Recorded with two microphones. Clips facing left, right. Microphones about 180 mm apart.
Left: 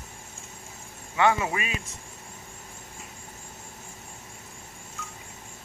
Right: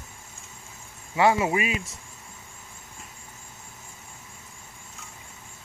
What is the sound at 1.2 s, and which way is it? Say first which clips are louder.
Speech: right 3 dB; 25° right (ahead or behind).